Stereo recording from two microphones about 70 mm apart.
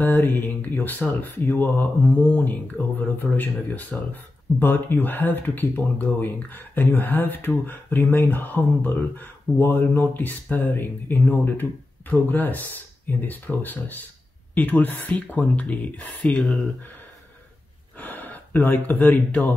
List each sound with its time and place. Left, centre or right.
0.0 s speech: left; by 16.5 s centre
17.9 s speech: left